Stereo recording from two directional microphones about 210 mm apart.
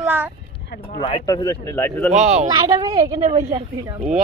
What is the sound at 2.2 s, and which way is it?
Speech, 5° right (ahead or behind).